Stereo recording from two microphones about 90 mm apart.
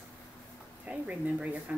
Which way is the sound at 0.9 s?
15° right (ahead or behind).